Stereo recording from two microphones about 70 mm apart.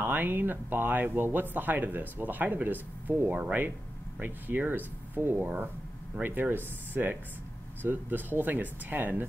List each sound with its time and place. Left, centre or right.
0.0 s speech: right
3.3 s speech: centre
4.2 s speech: right